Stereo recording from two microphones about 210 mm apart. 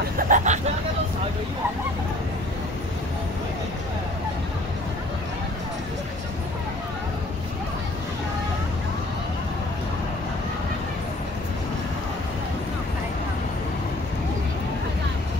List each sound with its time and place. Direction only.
0.2 s vehicle: 35° right (ahead or behind)